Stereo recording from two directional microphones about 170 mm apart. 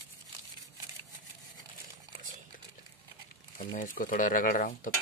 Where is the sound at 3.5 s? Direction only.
55° left (ahead or behind).